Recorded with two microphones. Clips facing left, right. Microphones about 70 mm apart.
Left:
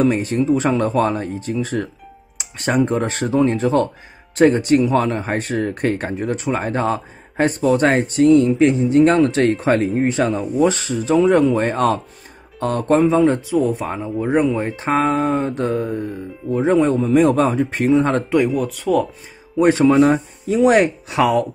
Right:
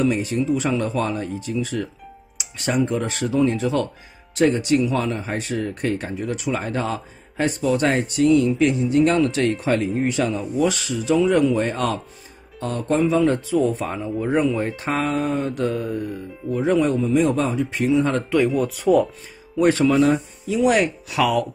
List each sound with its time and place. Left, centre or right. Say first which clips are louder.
0.0 s a man's voice: left 4 dB; left
13.1 s speech: left 3 dB; left
16.9 s a man's voice: left 4 dB; left
18.5 s speech: right 1 dB; centre
19.5 s speech: left 4 dB; left